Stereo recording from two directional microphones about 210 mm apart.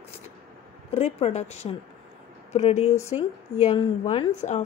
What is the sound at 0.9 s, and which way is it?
A woman's voice, 30° left (ahead or behind).